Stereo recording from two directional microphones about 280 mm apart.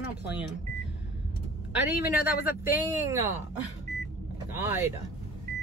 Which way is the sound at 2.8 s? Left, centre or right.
Centre.